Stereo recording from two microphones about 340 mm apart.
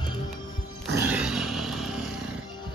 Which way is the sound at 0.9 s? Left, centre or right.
Centre.